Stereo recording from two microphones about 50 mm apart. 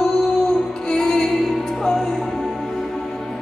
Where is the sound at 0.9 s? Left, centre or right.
Centre.